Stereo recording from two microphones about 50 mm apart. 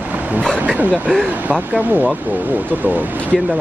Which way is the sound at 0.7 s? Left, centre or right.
Right.